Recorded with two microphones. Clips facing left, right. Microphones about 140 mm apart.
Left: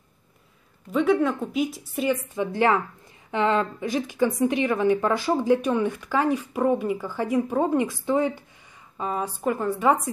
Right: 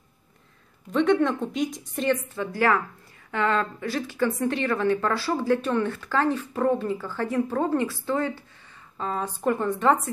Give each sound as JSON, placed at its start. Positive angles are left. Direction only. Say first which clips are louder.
{"t": 0.9, "sound": "a woman's voice", "louder": "even", "side_deg": 5}
{"t": 2.3, "sound": "a woman's voice", "louder": "left 2 dB", "side_deg": 20}